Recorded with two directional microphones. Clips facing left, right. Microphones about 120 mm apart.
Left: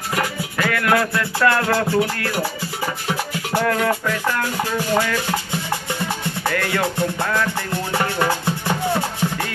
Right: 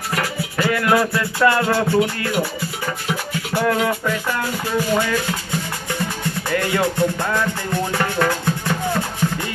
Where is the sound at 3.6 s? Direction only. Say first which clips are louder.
Even; 10° right (ahead or behind).